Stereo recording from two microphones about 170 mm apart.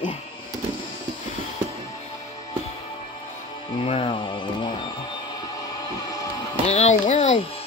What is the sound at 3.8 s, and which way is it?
Speech, 35° left (ahead or behind).